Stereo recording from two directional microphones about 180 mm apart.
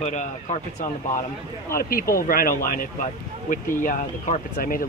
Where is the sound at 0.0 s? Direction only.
40° left (ahead or behind).